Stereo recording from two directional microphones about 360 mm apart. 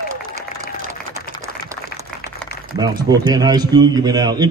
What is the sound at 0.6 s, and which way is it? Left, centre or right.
Applause, right.